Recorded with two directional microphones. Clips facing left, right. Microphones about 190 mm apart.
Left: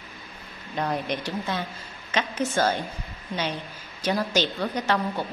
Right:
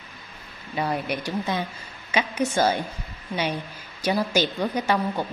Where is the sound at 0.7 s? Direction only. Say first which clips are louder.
Right 1 dB; 5° right (ahead or behind).